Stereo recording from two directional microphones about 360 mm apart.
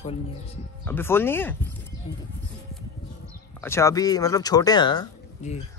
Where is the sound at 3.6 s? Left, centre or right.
Centre.